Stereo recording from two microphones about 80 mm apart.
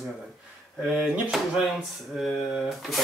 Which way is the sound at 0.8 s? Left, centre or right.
Centre.